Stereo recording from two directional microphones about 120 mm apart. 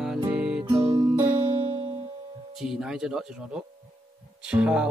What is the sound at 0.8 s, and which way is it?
Music, 45° right (ahead or behind).